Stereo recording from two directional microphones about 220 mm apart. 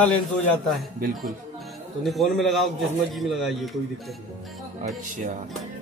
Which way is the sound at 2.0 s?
Centre (ahead or behind).